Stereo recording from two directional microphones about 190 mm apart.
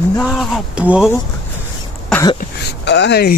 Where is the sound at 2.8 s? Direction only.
65° left (ahead or behind).